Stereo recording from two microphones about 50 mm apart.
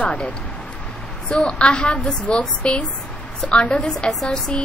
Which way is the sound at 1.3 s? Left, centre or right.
Centre.